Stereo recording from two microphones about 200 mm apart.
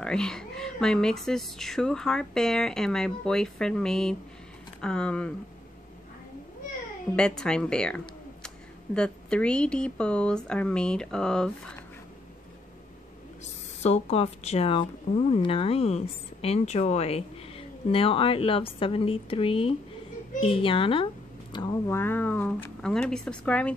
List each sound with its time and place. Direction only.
0.0 s a woman's voice: 5° left (ahead or behind)
7.2 s a woman's voice: 5° left (ahead or behind)
13.8 s a child's voice: 30° left (ahead or behind); by 23.7 s 5° left (ahead or behind)